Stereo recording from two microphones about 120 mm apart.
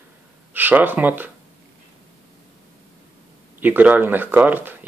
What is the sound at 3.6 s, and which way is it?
Speech, 15° right (ahead or behind).